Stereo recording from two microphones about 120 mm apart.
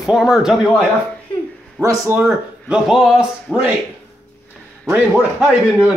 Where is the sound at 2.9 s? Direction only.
5° right (ahead or behind).